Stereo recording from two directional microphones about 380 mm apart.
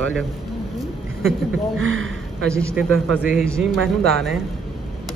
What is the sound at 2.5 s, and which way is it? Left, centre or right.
A man's voice, centre.